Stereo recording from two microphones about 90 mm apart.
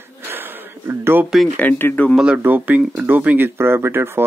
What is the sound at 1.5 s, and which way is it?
Speech, 20° left (ahead or behind).